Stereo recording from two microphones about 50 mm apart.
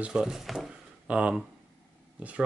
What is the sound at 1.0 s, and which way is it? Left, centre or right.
Speech, right.